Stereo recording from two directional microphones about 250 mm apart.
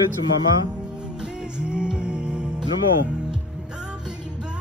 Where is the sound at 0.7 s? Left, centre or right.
Centre.